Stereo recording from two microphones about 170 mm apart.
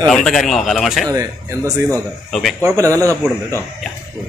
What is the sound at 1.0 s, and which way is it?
Speech, 20° right (ahead or behind).